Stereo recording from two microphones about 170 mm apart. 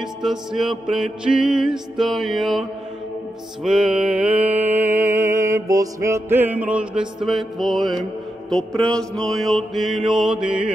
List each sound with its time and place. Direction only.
0.0 s music: 5° right (ahead or behind)
3.6 s mantra: 5° right (ahead or behind)
8.5 s music: 5° left (ahead or behind)